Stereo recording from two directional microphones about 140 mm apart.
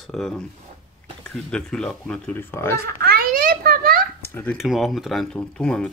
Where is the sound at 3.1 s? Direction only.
90° right.